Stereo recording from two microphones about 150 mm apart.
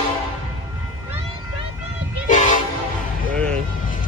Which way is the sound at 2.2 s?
55° left (ahead or behind).